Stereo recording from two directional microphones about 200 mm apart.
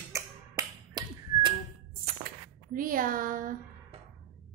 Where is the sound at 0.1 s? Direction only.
15° right (ahead or behind).